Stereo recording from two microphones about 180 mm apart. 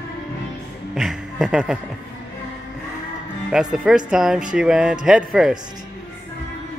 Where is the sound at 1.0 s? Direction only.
5° right (ahead or behind).